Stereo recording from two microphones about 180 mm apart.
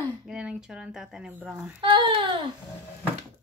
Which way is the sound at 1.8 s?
25° right (ahead or behind).